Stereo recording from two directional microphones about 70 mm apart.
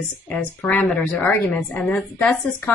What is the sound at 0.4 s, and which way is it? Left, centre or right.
A woman's voice, centre.